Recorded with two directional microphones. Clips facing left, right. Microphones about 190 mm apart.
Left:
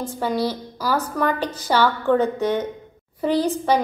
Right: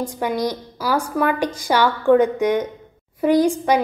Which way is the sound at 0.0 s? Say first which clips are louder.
Right 1 dB; 15° right (ahead or behind).